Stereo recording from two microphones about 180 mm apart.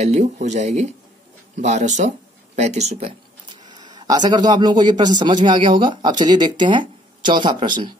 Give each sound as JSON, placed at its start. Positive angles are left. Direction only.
{"t": 0.0, "sound": "speech", "side_deg": -40}
{"t": 3.6, "sound": "a man's voice", "side_deg": -25}